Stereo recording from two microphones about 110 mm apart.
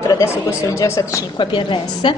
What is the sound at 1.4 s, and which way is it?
Speech, 45° left (ahead or behind).